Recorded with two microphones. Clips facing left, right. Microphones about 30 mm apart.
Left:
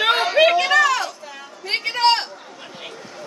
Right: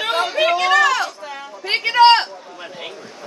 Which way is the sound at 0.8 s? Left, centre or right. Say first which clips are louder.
Right 2 dB; centre.